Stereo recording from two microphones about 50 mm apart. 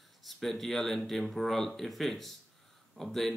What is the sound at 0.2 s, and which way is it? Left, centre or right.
Speech, centre.